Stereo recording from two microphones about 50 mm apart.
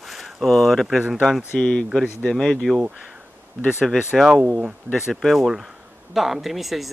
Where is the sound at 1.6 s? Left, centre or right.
Centre.